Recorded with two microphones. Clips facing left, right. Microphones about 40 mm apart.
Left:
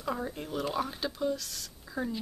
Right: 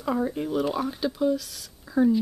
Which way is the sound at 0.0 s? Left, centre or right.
Centre.